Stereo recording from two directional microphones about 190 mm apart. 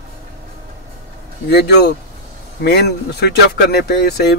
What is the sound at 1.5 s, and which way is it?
Speech, 60° left (ahead or behind).